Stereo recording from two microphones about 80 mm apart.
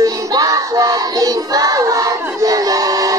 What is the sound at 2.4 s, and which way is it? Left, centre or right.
Battle cry, right.